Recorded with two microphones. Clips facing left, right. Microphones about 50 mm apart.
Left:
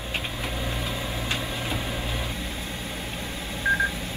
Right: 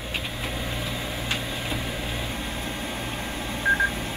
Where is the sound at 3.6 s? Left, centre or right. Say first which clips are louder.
Right 1 dB; right.